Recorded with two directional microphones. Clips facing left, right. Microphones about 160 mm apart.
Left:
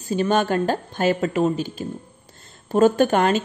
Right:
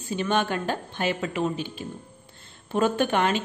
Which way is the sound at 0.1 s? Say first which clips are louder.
Left 5 dB; 40° left (ahead or behind).